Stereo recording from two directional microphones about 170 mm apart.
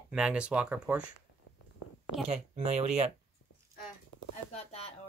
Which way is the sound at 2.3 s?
40° right (ahead or behind).